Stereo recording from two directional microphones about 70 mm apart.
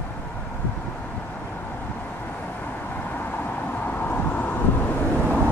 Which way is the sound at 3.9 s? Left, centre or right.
Left.